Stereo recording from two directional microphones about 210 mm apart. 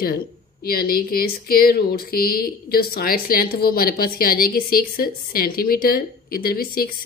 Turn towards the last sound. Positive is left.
turn(degrees=45)  # may be behind; listen again after turning